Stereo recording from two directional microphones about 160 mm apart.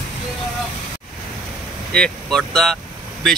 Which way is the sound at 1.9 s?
5° left (ahead or behind).